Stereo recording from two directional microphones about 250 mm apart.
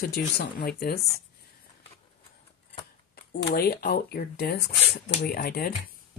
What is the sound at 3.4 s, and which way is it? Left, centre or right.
Speech, left.